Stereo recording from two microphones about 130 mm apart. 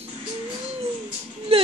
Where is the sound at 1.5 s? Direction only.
50° right (ahead or behind).